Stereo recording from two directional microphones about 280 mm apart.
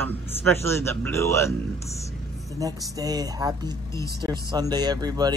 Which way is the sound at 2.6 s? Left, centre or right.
Centre.